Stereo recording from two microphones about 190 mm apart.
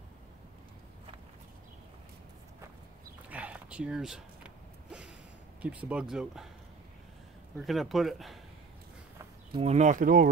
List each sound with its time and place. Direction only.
3.3 s a sound: 5° right (ahead or behind)
5.6 s speech: 5° right (ahead or behind)
7.5 s speech: centre (ahead or behind)
9.5 s speech: 30° right (ahead or behind)